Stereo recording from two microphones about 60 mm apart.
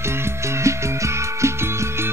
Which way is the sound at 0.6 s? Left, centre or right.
Right.